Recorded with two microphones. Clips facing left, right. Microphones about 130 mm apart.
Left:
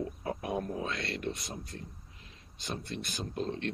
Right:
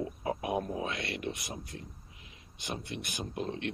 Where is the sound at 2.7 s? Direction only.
60° right (ahead or behind).